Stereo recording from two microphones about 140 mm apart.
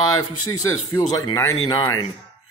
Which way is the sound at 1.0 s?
25° left (ahead or behind).